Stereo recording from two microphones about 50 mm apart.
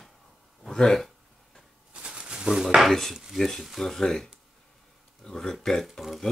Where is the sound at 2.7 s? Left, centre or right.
Centre.